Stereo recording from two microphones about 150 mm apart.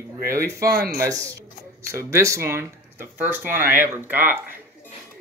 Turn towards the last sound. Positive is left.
turn(degrees=-15)  # may be behind; listen again after turning